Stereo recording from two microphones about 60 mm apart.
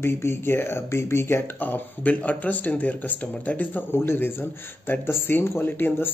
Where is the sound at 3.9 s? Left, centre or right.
Left.